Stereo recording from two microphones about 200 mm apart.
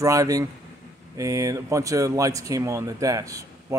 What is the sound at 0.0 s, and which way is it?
Speech, 15° right (ahead or behind).